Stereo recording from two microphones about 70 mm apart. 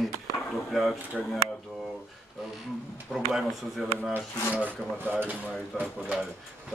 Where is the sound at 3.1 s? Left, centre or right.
Centre.